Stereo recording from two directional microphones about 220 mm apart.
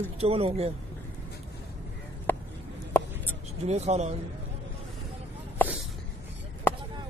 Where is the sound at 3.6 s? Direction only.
30° right (ahead or behind).